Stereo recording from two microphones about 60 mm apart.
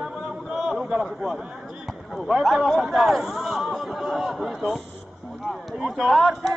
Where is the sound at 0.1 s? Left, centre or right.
Centre.